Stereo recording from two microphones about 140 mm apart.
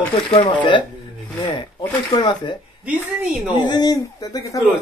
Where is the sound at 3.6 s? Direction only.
30° left (ahead or behind).